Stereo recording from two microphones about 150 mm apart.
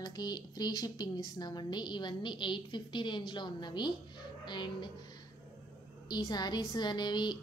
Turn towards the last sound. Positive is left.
turn(degrees=30)  # may be behind; listen again after turning